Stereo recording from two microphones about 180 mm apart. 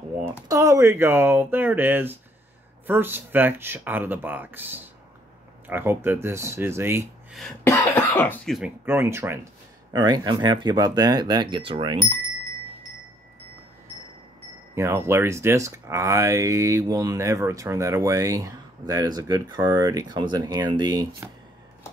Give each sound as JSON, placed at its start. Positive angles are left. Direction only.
{"t": 0.5, "sound": "speech", "side_deg": -15}
{"t": 7.6, "sound": "speech", "side_deg": 15}
{"t": 8.5, "sound": "speech", "side_deg": -10}
{"t": 14.8, "sound": "speech", "side_deg": -15}